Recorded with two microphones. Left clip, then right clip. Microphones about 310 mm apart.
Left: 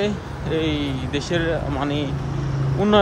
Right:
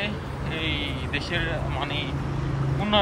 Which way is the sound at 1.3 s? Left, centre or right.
Centre.